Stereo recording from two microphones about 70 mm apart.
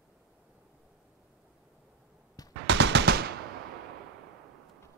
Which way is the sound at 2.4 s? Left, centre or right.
Left.